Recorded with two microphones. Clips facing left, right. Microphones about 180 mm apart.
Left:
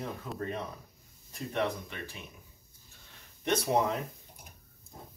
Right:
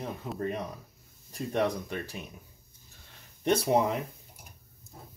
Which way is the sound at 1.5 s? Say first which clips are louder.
Right 4 dB; 40° right (ahead or behind).